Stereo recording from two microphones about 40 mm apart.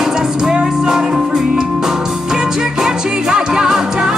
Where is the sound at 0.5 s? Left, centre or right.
Centre.